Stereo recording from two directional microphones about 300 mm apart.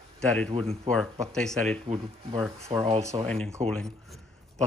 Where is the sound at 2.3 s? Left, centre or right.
Centre.